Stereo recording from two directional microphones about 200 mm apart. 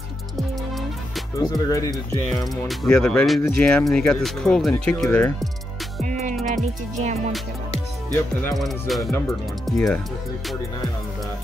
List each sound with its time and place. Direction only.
0.4 s music: centre (ahead or behind)
1.4 s speech: 15° left (ahead or behind)
2.5 s speech: centre (ahead or behind)
6.4 s music: 40° right (ahead or behind)
8.5 s speech: centre (ahead or behind)